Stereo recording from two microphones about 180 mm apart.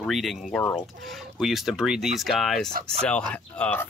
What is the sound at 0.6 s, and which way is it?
Speech, 10° left (ahead or behind).